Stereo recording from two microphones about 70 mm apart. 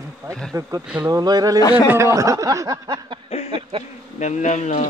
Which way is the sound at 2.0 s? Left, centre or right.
Right.